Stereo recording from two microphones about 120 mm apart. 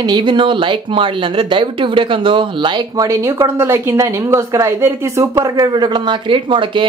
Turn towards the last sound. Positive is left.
turn(degrees=-45)  # may be behind; listen again after turning